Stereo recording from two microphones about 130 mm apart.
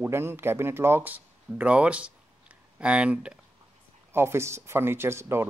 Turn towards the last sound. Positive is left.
turn(degrees=-20)  # may be behind; listen again after turning